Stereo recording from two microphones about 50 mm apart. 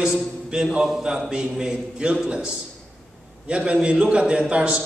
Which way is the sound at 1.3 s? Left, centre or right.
Centre.